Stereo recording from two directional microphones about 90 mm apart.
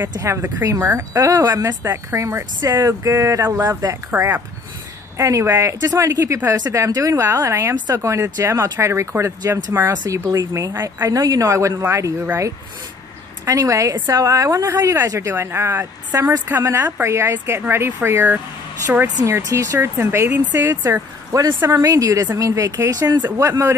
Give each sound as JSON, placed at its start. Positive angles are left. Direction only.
{"t": 0.2, "sound": "speech", "side_deg": -30}
{"t": 3.4, "sound": "speech", "side_deg": -25}
{"t": 7.7, "sound": "speech", "side_deg": -50}
{"t": 8.0, "sound": "speech", "side_deg": -35}
{"t": 20.6, "sound": "speech", "side_deg": -35}
{"t": 23.3, "sound": "speech", "side_deg": -35}